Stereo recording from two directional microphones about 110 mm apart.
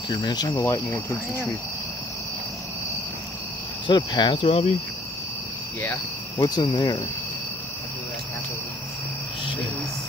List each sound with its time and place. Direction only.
0.1 s cricket: 40° left (ahead or behind); by 1.6 s 20° left (ahead or behind)
3.8 s cricket: 45° left (ahead or behind)
4.5 s cricket: 70° left (ahead or behind)
6.3 s cricket: 35° left (ahead or behind)